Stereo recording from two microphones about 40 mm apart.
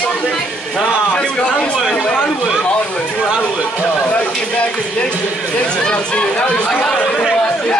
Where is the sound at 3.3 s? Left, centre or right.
Centre.